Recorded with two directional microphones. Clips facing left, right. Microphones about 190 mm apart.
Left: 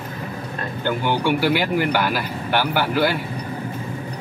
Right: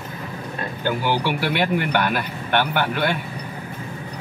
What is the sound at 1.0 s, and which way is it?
A man's voice, 5° right (ahead or behind).